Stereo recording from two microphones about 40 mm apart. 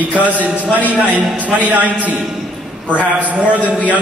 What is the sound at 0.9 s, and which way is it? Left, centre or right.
A man's voice, right.